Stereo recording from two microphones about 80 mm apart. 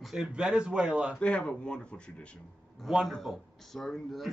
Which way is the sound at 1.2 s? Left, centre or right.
Centre.